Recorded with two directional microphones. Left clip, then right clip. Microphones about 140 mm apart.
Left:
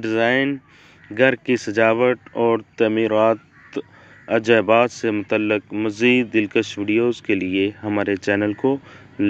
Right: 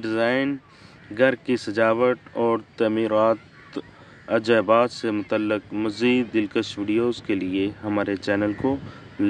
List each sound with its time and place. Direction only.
0.0 s speech: 15° left (ahead or behind)